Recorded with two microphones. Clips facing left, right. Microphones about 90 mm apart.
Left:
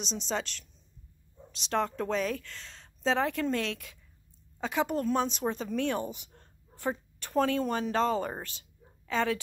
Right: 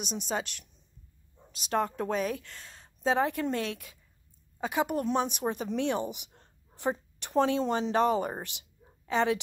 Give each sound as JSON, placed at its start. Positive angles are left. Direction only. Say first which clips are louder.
{"t": 0.3, "sound": "a woman's voice", "louder": "even", "side_deg": -10}